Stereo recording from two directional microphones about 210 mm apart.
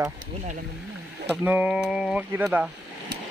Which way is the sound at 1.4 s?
5° right (ahead or behind).